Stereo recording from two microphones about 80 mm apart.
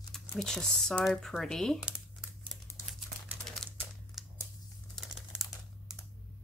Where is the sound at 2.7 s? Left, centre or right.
Left.